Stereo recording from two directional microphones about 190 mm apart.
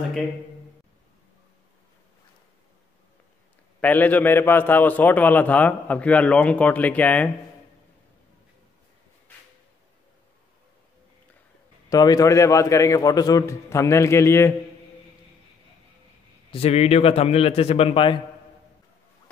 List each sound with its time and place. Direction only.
3.8 s a man's voice: 10° left (ahead or behind)
11.9 s a man's voice: 20° left (ahead or behind)
16.5 s a man's voice: 35° left (ahead or behind)